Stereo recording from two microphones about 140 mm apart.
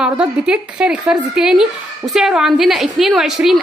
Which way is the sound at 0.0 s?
5° right (ahead or behind).